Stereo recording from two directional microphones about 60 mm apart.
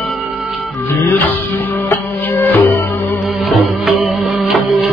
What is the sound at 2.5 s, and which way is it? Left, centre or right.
Music, left.